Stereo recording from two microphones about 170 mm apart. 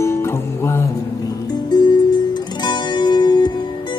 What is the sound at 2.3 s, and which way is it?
Music, 25° left (ahead or behind).